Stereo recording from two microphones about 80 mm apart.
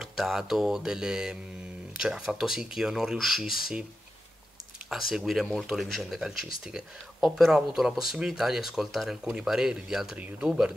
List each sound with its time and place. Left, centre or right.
0.0 s speech: centre
4.8 s speech: centre